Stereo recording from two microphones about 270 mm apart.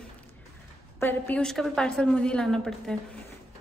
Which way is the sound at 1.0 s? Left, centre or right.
Centre.